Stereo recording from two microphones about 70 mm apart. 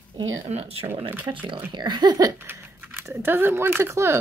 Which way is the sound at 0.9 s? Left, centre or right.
Right.